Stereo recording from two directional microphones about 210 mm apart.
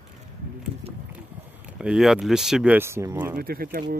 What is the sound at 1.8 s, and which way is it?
Speech, centre (ahead or behind).